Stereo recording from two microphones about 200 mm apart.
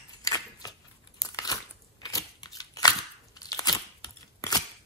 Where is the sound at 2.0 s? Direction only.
20° left (ahead or behind).